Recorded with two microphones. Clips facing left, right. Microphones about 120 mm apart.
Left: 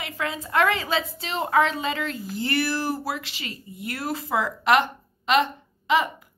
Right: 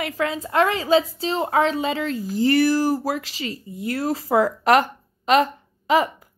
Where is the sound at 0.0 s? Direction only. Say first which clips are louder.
Right 6 dB; 35° right (ahead or behind).